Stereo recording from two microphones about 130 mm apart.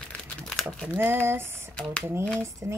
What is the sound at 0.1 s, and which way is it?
Crumpling, 5° left (ahead or behind).